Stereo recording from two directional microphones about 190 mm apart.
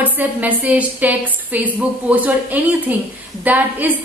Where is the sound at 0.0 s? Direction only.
10° right (ahead or behind).